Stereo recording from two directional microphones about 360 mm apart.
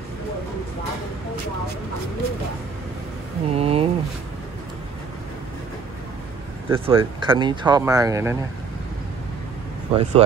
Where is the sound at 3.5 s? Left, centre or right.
Centre.